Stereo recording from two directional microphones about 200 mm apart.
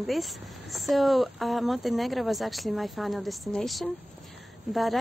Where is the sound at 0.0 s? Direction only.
Centre (ahead or behind).